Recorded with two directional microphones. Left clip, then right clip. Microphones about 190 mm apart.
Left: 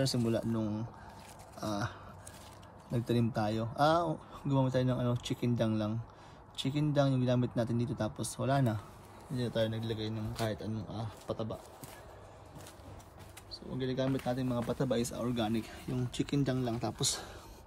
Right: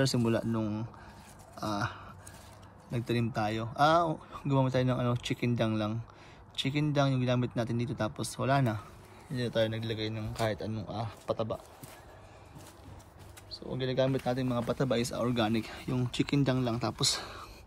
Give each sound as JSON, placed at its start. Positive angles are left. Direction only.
{"t": 0.0, "sound": "speech", "side_deg": 10}
{"t": 13.5, "sound": "speech", "side_deg": 10}